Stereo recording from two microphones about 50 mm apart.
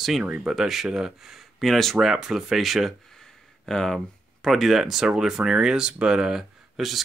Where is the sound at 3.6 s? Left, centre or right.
Centre.